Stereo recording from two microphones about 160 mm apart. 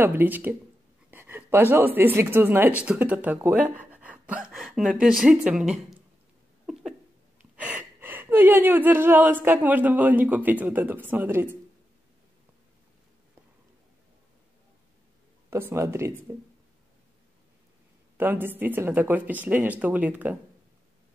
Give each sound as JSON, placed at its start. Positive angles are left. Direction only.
{"t": 0.0, "sound": "speech", "side_deg": -10}
{"t": 1.1, "sound": "a sound", "side_deg": -10}
{"t": 2.0, "sound": "speech", "side_deg": -10}
{"t": 6.6, "sound": "a sound", "side_deg": 0}
{"t": 7.5, "sound": "speech", "side_deg": -10}
{"t": 15.5, "sound": "speech", "side_deg": -15}
{"t": 18.1, "sound": "speech", "side_deg": -10}